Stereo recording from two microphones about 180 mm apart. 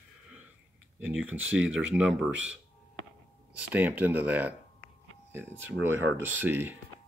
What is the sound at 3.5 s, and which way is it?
Speech, 10° right (ahead or behind).